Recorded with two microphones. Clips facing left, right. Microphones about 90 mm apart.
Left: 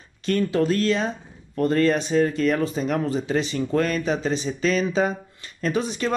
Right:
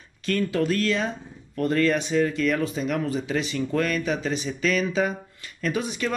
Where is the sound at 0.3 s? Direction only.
30° left (ahead or behind).